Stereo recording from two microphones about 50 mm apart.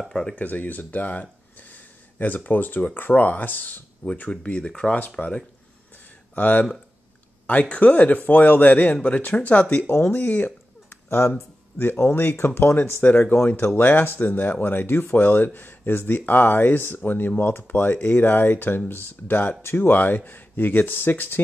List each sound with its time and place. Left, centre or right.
0.1 s speech: centre
0.4 s speech: left
4.3 s speech: left
5.2 s speech: left
9.8 s speech: left
10.2 s a sound: left
11.1 s speech: left